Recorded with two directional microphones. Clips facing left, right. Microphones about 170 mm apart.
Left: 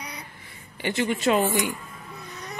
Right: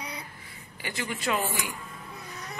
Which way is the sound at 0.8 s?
25° left (ahead or behind).